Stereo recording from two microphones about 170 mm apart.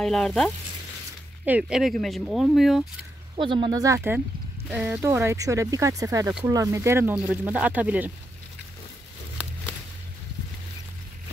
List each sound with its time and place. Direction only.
0.0 s speech: 5° left (ahead or behind)
3.3 s speech: 30° right (ahead or behind)
4.6 s speech: 5° right (ahead or behind)